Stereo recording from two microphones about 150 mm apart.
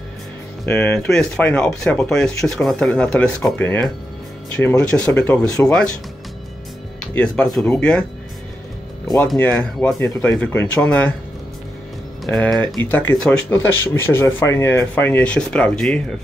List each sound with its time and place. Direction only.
0.7 s speech: 5° left (ahead or behind)
7.2 s speech: 5° left (ahead or behind)
9.4 s speech: 10° left (ahead or behind)
9.9 s speech: 20° left (ahead or behind)
12.3 s speech: 5° left (ahead or behind)